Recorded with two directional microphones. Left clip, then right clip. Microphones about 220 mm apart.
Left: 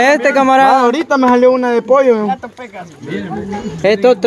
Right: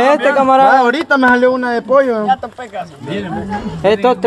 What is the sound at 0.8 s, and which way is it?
Speech, 5° left (ahead or behind).